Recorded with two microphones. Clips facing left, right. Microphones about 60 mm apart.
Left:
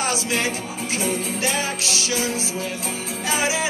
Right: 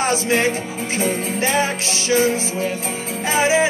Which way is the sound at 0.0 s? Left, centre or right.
Right.